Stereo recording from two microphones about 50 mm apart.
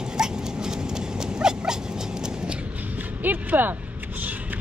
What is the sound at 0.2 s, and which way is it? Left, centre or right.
Dog, centre.